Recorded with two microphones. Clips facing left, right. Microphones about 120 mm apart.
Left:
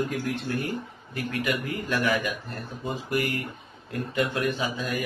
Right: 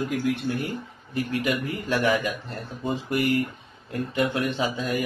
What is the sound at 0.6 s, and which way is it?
Speech, 25° right (ahead or behind).